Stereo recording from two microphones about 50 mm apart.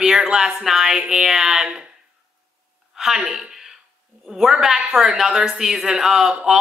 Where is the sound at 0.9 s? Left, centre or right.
Centre.